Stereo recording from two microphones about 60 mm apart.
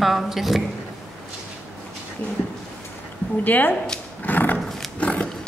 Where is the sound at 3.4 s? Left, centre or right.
Left.